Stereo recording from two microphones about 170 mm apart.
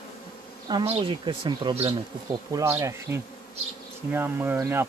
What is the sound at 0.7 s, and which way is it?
Speech, 30° right (ahead or behind).